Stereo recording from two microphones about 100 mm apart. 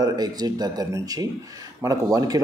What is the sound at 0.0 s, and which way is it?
Speech, 40° right (ahead or behind).